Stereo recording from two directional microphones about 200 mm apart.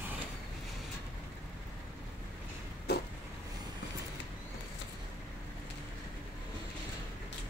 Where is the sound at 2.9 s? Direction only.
55° left (ahead or behind).